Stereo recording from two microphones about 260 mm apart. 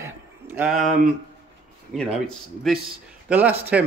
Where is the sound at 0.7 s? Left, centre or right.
Right.